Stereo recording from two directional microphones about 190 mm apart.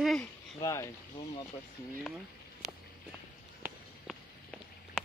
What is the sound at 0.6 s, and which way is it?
Speech, 20° left (ahead or behind).